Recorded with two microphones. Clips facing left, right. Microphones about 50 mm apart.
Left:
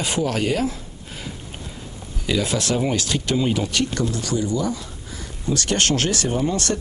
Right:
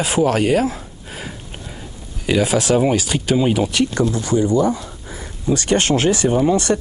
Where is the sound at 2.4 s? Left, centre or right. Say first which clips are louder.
Right 6 dB; centre.